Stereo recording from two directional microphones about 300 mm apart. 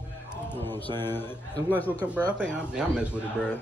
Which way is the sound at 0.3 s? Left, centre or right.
Centre.